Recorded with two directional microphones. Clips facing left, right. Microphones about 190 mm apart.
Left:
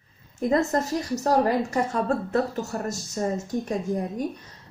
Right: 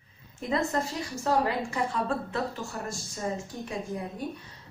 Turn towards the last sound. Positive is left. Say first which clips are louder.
# left 7 dB
turn(degrees=40)  # may be behind; listen again after turning